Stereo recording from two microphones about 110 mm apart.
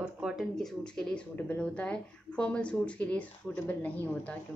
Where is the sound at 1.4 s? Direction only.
15° left (ahead or behind).